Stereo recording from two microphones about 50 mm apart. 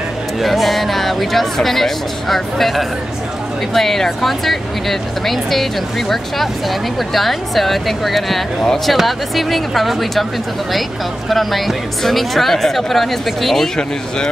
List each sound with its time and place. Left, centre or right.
0.4 s speech: centre
11.2 s speech: centre
13.7 s speech: centre